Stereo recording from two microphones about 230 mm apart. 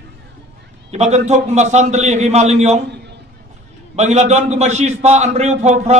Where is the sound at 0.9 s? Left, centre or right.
Right.